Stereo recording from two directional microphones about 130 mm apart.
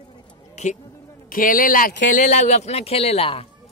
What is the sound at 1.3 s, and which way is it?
Speech, 90° left.